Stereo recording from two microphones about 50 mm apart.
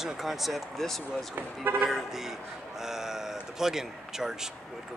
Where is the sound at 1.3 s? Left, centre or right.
Right.